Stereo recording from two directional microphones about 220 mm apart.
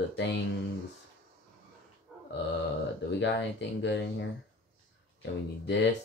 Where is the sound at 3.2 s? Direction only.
55° left (ahead or behind).